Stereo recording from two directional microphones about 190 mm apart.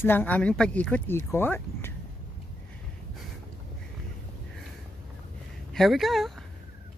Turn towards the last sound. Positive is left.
turn(degrees=0)  # may be behind; listen again after turning